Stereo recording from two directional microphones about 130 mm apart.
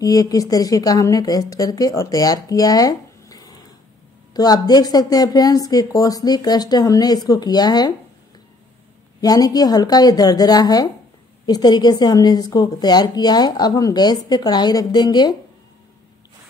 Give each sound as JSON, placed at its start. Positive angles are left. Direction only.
{"t": 0.0, "sound": "speech", "side_deg": 30}
{"t": 9.2, "sound": "a woman's voice", "side_deg": 30}